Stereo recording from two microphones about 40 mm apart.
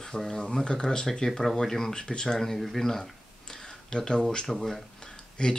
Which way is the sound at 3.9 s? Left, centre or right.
Centre.